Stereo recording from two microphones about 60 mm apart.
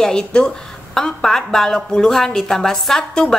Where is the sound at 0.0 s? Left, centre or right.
Centre.